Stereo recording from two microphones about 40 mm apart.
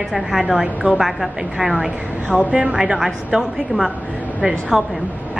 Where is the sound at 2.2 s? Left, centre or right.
Right.